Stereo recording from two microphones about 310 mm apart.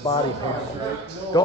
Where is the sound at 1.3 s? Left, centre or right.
Centre.